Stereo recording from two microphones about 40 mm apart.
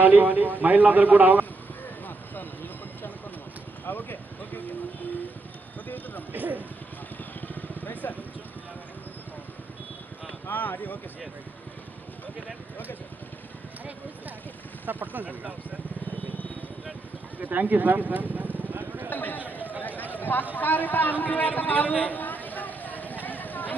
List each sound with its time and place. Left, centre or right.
0.0 s a man's voice: right
3.8 s speech: left
6.3 s a man's voice: right
7.4 s vehicle: left
10.5 s speech: left
14.9 s a man's voice: right
17.4 s a man's voice: right
18.7 s vehicle: right
19.0 s speech: left
20.2 s a sound: left
20.5 s a man's voice: left
23.2 s a sound: left